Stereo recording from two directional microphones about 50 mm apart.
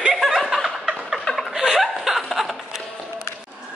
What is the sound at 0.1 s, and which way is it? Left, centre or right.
Chuckle, centre.